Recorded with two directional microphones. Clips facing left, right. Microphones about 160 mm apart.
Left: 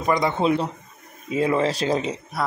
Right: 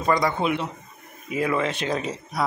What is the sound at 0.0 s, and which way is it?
Speech, 20° left (ahead or behind).